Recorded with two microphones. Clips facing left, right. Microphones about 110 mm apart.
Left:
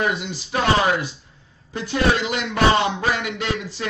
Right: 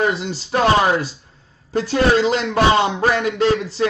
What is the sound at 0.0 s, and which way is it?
A man's voice, 30° right (ahead or behind).